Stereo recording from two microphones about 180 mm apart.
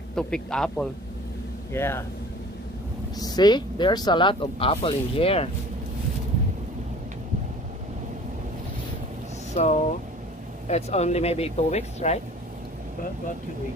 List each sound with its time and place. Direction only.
0.1 s speech: 5° left (ahead or behind)
3.2 s speech: 20° left (ahead or behind)
9.6 s speech: 40° left (ahead or behind)